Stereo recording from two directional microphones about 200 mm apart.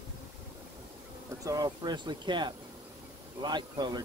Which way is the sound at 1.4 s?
20° right (ahead or behind).